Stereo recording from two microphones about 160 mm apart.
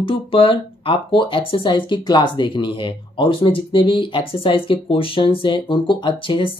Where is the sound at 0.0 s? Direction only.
35° left (ahead or behind).